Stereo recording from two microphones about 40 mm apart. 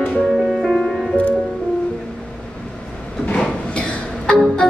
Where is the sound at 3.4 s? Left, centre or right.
Left.